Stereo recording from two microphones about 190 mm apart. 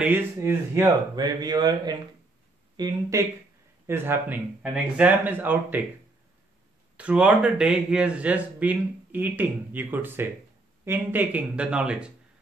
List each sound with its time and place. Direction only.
0.0 s speech: 10° right (ahead or behind)
7.0 s speech: 5° right (ahead or behind)